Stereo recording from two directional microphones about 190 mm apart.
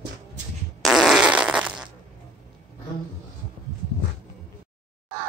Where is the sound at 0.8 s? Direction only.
Centre (ahead or behind).